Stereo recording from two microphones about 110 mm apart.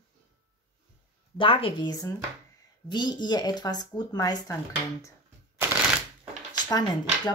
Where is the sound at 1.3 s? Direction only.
50° left (ahead or behind); by 4.5 s 35° left (ahead or behind).